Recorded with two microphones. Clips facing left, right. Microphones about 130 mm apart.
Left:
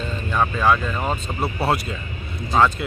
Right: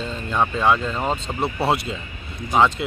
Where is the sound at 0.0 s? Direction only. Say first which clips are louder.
Even; 20° right (ahead or behind).